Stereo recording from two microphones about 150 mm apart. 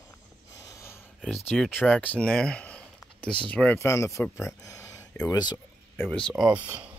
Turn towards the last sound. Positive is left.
turn(degrees=-10)  # may be behind; listen again after turning